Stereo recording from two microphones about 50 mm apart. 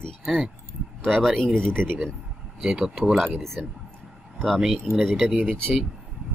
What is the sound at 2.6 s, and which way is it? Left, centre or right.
Speech, centre.